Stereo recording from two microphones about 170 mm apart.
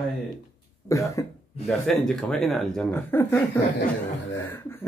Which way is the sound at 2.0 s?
5° left (ahead or behind).